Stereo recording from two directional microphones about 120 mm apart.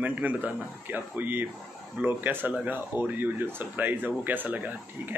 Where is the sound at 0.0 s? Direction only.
15° right (ahead or behind).